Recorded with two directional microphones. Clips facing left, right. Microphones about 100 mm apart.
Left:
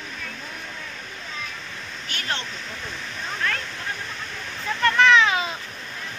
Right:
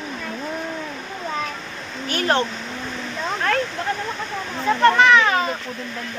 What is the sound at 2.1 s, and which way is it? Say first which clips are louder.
Speech: right 11 dB; 40° right (ahead or behind).